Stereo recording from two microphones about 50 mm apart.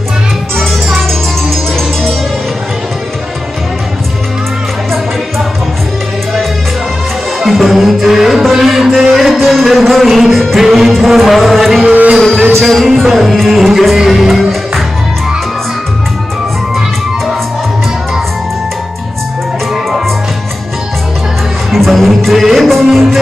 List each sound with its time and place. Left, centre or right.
0.6 s music: centre
7.3 s music: centre
11.8 s music: right
12.5 s music: centre
21.7 s music: centre